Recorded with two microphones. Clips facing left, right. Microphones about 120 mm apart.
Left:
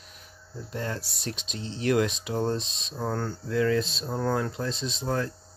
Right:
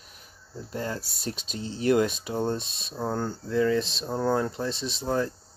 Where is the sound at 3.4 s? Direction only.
Centre (ahead or behind).